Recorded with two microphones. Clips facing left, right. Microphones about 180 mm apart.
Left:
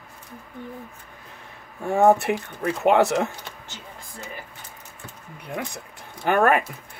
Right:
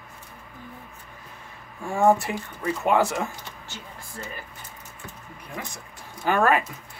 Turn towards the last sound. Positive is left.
turn(degrees=60)  # may be behind; listen again after turning